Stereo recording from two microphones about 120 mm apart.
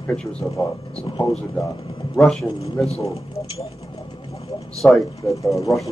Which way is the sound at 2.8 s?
60° left (ahead or behind).